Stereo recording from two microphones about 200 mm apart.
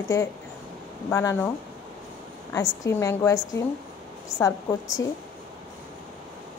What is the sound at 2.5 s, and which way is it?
Speech, 15° left (ahead or behind).